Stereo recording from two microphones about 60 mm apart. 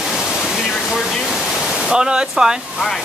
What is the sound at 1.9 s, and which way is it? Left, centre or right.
Speech, centre.